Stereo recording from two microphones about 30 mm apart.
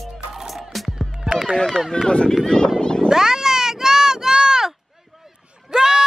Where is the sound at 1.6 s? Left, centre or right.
Centre.